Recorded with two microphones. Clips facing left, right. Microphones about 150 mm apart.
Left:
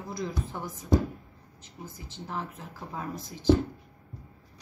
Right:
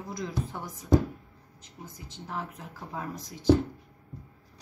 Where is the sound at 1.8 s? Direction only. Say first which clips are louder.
Left 2 dB; centre (ahead or behind).